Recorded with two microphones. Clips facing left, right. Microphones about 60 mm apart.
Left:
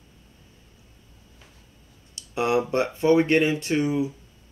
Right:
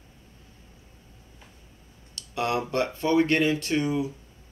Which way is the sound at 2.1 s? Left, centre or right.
Left.